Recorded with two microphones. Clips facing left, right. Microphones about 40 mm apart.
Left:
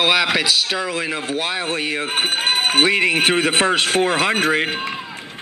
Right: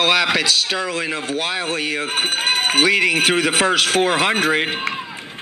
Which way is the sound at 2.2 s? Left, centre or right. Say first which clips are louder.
Even; centre.